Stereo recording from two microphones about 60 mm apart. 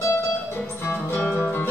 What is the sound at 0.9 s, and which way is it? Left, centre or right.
Music, left.